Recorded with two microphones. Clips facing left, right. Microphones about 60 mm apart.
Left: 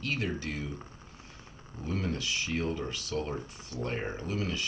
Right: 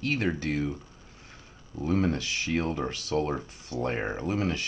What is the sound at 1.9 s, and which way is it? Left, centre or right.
Speech, right.